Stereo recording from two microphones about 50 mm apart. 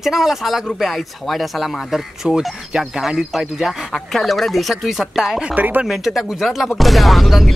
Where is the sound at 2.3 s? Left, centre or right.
Centre.